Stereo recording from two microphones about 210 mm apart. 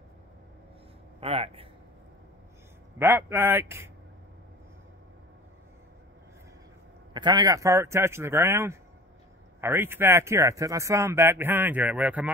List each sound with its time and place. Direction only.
1.2 s speech: 25° right (ahead or behind)
3.0 s speech: 10° right (ahead or behind)
7.2 s speech: 20° right (ahead or behind)